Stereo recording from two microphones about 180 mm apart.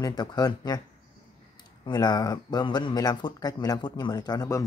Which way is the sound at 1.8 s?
20° left (ahead or behind).